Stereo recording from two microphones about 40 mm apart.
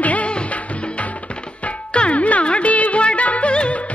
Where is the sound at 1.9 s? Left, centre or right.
Left.